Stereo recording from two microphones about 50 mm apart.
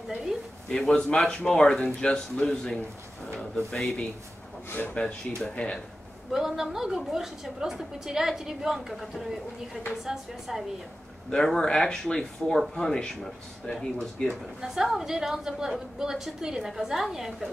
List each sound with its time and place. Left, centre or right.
0.3 s a sound: centre
0.7 s speech: centre
4.6 s speech: left
4.9 s speech: centre
6.3 s a woman's voice: centre
11.2 s speech: centre
14.6 s a woman's voice: centre